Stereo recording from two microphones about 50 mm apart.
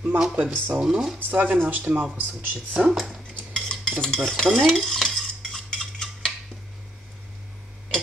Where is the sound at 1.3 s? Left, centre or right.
Right.